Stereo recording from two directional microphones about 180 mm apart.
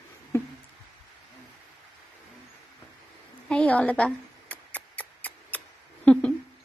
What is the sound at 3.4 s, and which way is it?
Mouse, 5° left (ahead or behind).